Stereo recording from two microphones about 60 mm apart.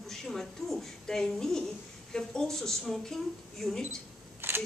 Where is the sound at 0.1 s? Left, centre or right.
Centre.